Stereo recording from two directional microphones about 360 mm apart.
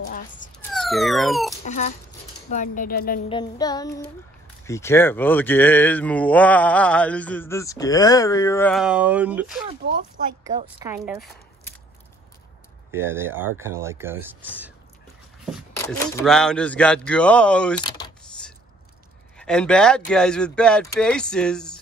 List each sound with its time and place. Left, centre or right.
0.6 s speech: centre
1.6 s a woman's voice: centre
3.3 s child singing: centre
4.6 s speech: centre
9.7 s speech: right
10.4 s speech: centre
12.9 s speech: centre
15.7 s speech: centre